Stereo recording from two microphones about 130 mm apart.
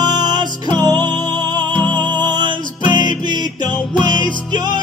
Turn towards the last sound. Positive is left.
turn(degrees=-35)  # may be behind; listen again after turning